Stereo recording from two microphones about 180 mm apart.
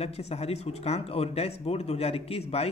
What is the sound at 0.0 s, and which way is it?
Speech, 35° left (ahead or behind).